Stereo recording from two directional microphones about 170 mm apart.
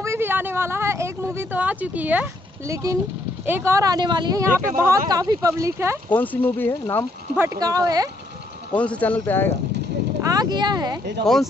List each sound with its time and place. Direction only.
0.0 s speech: 15° right (ahead or behind)
6.1 s speech: 10° left (ahead or behind)
7.3 s speech: 20° right (ahead or behind)
8.7 s speech: 5° left (ahead or behind)
10.2 s speech: 20° right (ahead or behind)